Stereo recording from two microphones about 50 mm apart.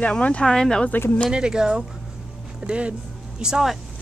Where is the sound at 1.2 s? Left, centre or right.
Centre.